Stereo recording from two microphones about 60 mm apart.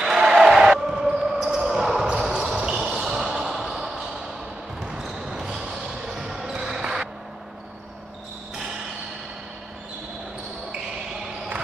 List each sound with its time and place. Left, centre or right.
0.0 s basketball bounce: centre